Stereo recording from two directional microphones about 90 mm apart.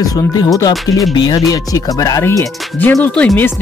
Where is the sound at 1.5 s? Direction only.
40° left (ahead or behind).